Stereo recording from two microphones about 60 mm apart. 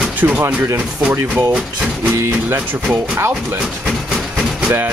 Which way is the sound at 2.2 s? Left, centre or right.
Right.